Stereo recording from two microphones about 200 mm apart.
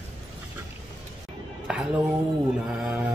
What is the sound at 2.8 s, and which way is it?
Speech, 5° right (ahead or behind).